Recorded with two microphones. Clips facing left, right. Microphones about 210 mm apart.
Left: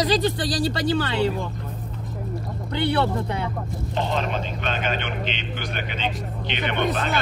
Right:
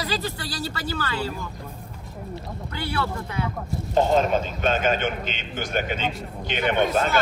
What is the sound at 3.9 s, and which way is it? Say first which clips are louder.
A man's voice: right 6 dB; 45° right (ahead or behind).